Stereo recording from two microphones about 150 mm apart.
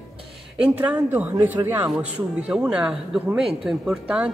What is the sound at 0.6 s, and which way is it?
Speech, 10° right (ahead or behind).